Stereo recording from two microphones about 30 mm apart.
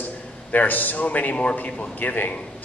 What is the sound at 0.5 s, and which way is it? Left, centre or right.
Speech, left.